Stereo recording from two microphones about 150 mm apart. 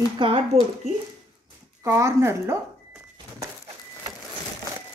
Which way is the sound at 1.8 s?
20° right (ahead or behind).